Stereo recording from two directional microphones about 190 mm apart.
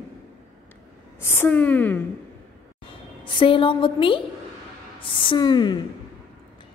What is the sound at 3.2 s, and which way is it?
A woman's voice, 25° left (ahead or behind).